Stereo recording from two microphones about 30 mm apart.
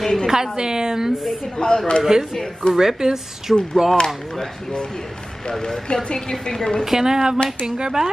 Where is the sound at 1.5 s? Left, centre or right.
Left.